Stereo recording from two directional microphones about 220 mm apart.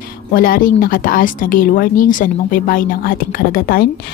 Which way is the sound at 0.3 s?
40° left (ahead or behind).